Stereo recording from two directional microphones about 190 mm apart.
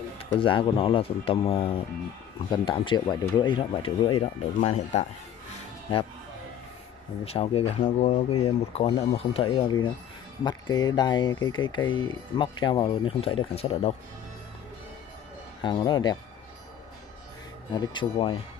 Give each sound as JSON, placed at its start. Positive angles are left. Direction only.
{"t": 0.2, "sound": "speech", "side_deg": 25}
{"t": 7.2, "sound": "speech", "side_deg": 30}
{"t": 15.6, "sound": "speech", "side_deg": 25}
{"t": 17.7, "sound": "speech", "side_deg": 25}